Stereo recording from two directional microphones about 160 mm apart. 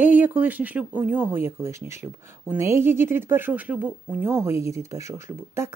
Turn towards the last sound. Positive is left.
turn(degrees=-15)  # may be behind; listen again after turning